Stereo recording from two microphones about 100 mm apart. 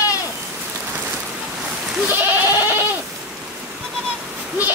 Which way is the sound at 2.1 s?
20° right (ahead or behind).